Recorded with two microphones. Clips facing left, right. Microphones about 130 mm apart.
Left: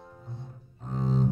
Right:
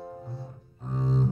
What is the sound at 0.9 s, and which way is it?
Cello, centre (ahead or behind).